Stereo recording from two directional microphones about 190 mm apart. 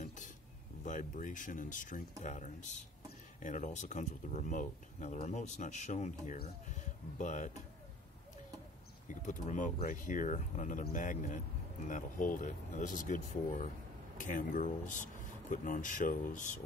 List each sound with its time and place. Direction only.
0.8 s speech: 40° left (ahead or behind)
9.0 s speech: 40° left (ahead or behind)